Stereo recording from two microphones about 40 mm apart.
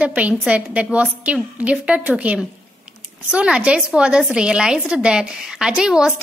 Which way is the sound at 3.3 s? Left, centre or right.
Right.